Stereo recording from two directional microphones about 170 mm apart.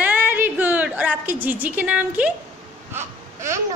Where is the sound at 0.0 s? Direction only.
10° right (ahead or behind).